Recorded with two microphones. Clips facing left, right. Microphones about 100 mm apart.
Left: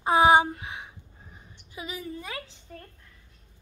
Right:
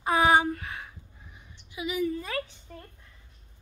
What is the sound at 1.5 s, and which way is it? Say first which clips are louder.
Speech: right 6 dB; 40° left (ahead or behind).